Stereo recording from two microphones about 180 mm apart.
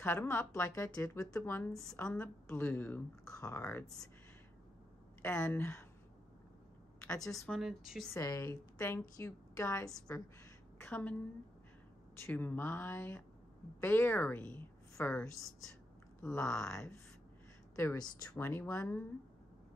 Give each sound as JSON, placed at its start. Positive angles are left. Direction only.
{"t": 0.0, "sound": "speech", "side_deg": 10}
{"t": 1.7, "sound": "speech", "side_deg": 0}
{"t": 5.2, "sound": "speech", "side_deg": 10}
{"t": 7.3, "sound": "speech", "side_deg": 0}
{"t": 8.1, "sound": "a woman's voice", "side_deg": 20}
{"t": 12.2, "sound": "a woman's voice", "side_deg": 10}
{"t": 16.7, "sound": "speech", "side_deg": 15}